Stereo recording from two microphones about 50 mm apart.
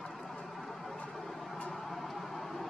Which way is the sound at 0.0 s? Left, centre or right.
Centre.